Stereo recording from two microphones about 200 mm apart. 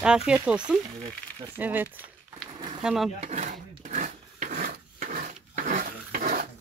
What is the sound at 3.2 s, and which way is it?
Wood, 35° right (ahead or behind).